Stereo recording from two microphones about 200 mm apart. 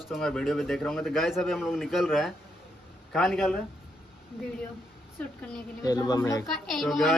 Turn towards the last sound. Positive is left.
turn(degrees=0)  # may be behind; listen again after turning